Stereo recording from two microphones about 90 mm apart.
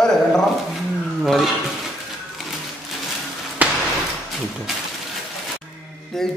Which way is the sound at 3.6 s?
15° right (ahead or behind).